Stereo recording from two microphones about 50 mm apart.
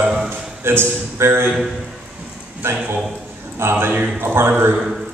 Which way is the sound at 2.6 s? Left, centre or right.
Right.